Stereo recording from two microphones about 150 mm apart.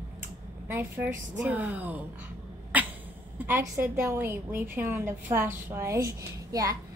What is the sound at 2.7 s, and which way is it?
Cat, 10° right (ahead or behind).